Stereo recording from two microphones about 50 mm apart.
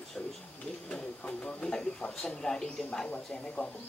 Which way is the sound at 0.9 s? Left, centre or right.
Centre.